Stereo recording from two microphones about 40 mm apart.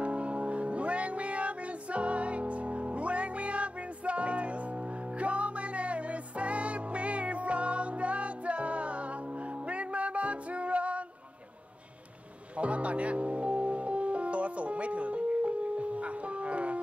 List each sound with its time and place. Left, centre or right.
0.0 s music: right
12.5 s music: right